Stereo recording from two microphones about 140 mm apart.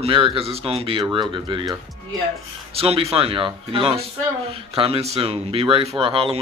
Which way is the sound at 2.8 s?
45° right (ahead or behind).